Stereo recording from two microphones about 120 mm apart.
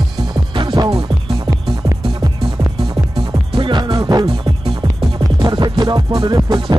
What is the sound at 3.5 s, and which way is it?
Music, 40° right (ahead or behind).